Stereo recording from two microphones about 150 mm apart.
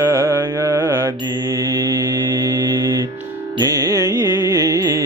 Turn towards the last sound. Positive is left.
turn(degrees=-20)  # may be behind; listen again after turning